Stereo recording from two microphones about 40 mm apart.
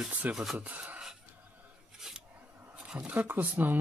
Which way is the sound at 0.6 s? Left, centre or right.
Right.